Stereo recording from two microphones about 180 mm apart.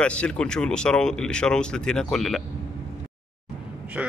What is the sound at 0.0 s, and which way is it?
Speech, 5° left (ahead or behind).